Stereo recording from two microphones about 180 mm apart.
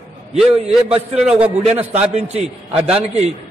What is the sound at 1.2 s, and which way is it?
Speech, 5° right (ahead or behind).